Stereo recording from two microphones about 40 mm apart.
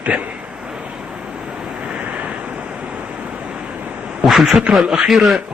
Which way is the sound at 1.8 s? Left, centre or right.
Right.